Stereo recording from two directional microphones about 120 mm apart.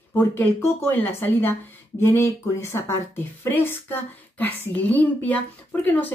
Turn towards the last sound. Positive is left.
turn(degrees=15)  # may be behind; listen again after turning